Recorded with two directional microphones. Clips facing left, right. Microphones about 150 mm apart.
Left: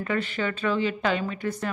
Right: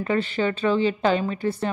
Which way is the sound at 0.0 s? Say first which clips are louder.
Right 4 dB; 30° right (ahead or behind).